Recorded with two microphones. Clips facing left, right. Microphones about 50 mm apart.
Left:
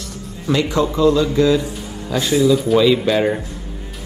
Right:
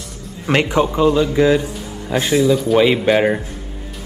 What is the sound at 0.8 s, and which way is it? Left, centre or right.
Speech, right.